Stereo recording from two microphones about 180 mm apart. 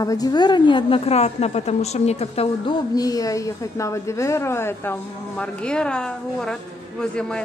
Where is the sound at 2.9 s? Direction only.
20° left (ahead or behind).